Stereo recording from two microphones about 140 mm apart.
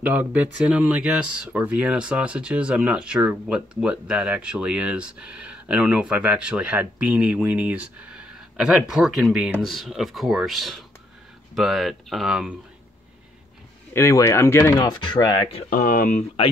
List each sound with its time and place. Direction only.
0.0 s speech: 10° right (ahead or behind)
13.9 s speech: 20° left (ahead or behind)
14.8 s speech: 30° left (ahead or behind)
15.7 s speech: 70° left (ahead or behind)